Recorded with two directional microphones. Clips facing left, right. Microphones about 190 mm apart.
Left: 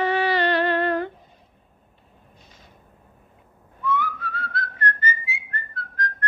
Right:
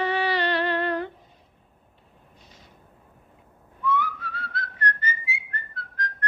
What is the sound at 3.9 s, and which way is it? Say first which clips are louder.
Whistling: left 1 dB; 50° left (ahead or behind).